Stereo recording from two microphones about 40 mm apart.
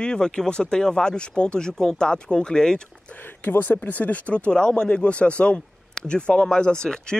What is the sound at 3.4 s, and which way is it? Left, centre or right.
Speech, left.